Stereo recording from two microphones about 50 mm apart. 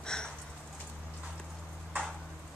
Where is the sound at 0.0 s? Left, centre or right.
Centre.